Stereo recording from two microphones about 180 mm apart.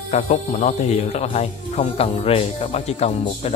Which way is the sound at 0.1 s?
35° left (ahead or behind).